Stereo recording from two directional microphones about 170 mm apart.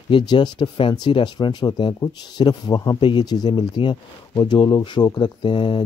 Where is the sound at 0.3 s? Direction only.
25° left (ahead or behind).